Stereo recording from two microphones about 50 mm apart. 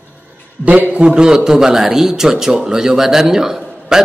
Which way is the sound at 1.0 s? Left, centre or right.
Centre.